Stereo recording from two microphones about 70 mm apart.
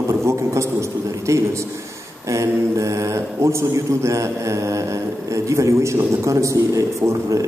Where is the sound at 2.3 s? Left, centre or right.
Right.